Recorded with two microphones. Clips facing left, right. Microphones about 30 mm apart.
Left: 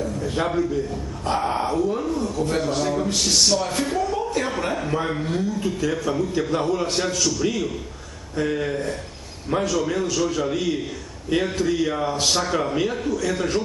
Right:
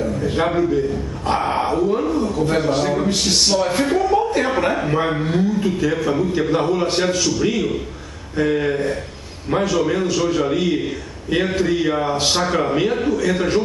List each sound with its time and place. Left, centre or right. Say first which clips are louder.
0.0 s a man's voice: right 5 dB; right